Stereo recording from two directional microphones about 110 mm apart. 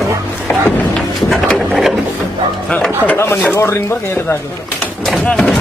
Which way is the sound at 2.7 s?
10° left (ahead or behind).